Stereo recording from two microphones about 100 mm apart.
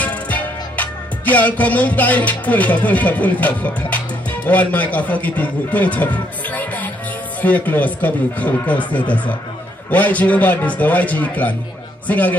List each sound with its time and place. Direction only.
0.0 s music: 15° left (ahead or behind)
7.4 s speech: 15° left (ahead or behind)